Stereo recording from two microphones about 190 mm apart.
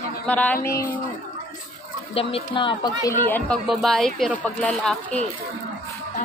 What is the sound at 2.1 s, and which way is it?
Speech, 30° left (ahead or behind).